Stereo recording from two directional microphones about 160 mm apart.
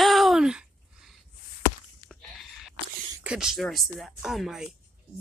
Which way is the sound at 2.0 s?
Centre (ahead or behind).